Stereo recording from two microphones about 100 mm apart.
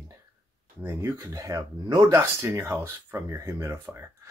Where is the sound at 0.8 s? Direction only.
30° right (ahead or behind).